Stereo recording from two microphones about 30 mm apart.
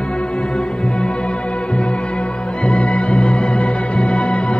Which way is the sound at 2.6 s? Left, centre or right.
Left.